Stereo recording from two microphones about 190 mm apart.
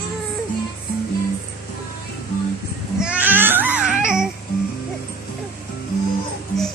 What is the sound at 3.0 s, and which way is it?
Baby cry, 5° right (ahead or behind).